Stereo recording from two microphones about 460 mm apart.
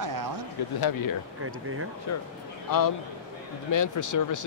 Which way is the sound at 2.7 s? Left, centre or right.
Left.